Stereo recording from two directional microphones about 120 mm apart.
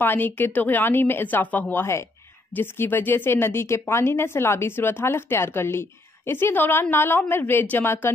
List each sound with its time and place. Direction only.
0.0 s speech: 15° left (ahead or behind)